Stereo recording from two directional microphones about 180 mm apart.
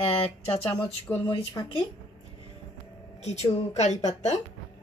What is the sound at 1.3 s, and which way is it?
Speech, 30° left (ahead or behind).